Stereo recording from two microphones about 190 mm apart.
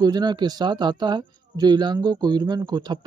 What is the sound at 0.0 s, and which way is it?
A man's voice, 20° right (ahead or behind).